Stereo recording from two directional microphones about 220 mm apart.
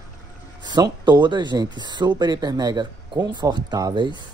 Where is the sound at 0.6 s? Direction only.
20° right (ahead or behind).